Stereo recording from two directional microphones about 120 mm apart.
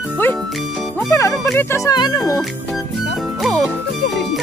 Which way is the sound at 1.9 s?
35° left (ahead or behind).